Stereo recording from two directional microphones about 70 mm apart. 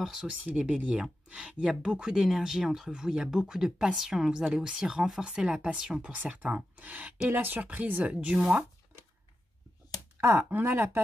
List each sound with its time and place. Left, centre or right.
0.0 s speech: centre
10.5 s speech: right